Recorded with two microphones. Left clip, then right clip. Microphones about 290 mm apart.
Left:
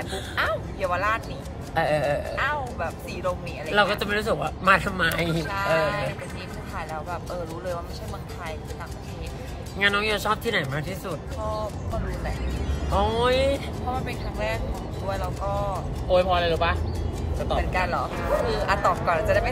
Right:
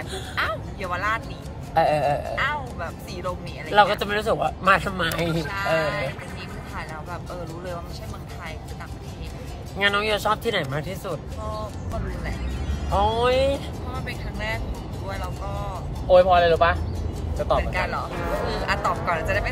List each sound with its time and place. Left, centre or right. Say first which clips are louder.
0.4 s speech: left 1 dB; centre
1.8 s speech: right 3 dB; centre
2.3 s speech: right 1 dB; centre
3.7 s speech: right 4 dB; centre
5.4 s speech: left 1 dB; centre
9.8 s speech: right 1 dB; centre
12.9 s speech: right 2 dB; centre
14.0 s speech: left 1 dB; centre
16.1 s speech: right 6 dB; right
17.7 s speech: left 1 dB; centre